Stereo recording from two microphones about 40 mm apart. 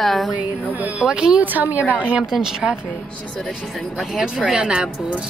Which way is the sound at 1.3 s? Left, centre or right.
Right.